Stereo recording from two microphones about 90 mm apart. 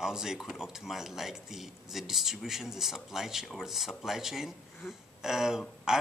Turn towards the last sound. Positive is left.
turn(degrees=-5)  # may be behind; listen again after turning